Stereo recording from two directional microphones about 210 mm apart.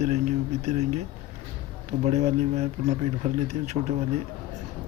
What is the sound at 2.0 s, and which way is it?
Speech, 30° right (ahead or behind).